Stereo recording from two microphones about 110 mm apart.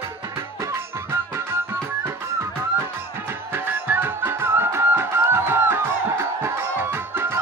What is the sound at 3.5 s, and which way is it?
Music, 20° right (ahead or behind).